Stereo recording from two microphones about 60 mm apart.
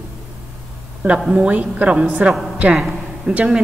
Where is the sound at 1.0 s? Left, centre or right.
Centre.